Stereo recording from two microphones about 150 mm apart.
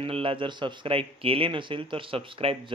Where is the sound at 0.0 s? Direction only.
35° right (ahead or behind).